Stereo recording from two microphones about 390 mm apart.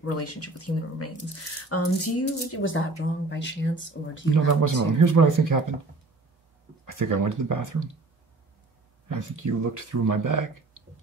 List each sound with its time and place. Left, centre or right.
0.0 s speech: left
4.3 s speech: right
6.9 s speech: right
9.4 s speech: right